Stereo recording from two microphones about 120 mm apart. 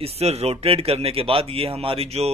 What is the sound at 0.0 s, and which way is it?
A man's voice, 60° right (ahead or behind).